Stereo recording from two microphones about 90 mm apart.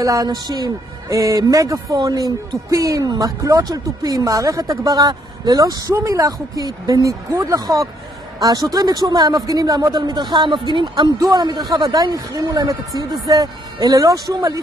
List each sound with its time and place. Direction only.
0.0 s a man's voice: 40° right (ahead or behind); by 11.1 s 60° right (ahead or behind)
11.1 s a man's voice: 45° right (ahead or behind)